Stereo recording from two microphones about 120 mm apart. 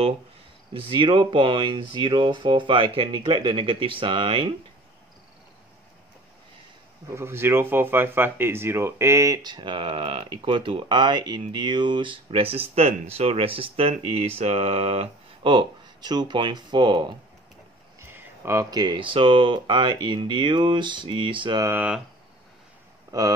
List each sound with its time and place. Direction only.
0.7 s speech: 45° right (ahead or behind)
7.2 s speech: 20° right (ahead or behind); by 12.2 s 40° right (ahead or behind)
12.3 s speech: 55° right (ahead or behind); by 17.1 s 40° right (ahead or behind)
18.0 s speech: 20° right (ahead or behind); by 21.5 s 45° right (ahead or behind)
21.7 s speech: 10° right (ahead or behind)
23.1 s speech: 30° right (ahead or behind)